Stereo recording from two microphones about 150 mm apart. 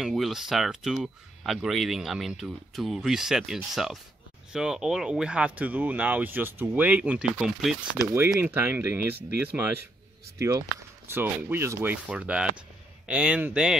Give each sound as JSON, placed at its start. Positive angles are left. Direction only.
{"t": 0.0, "sound": "speech", "side_deg": 0}
{"t": 8.1, "sound": "speech", "side_deg": -15}